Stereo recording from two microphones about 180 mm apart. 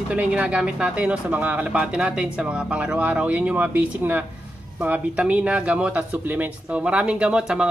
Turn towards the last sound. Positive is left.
turn(degrees=-5)  # may be behind; listen again after turning